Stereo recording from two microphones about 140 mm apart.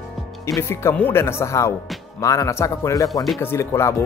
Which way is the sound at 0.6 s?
20° left (ahead or behind).